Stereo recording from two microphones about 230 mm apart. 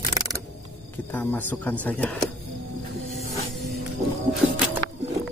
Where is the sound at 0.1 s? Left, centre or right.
Centre.